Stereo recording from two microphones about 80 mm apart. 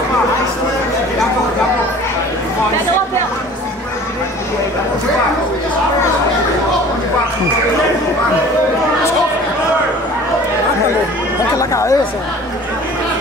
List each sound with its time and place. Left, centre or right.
11.5 s speech: left